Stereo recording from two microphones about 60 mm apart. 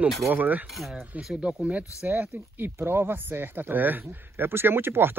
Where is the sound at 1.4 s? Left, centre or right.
Centre.